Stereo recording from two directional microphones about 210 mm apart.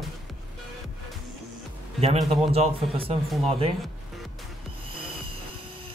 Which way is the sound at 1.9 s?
30° right (ahead or behind).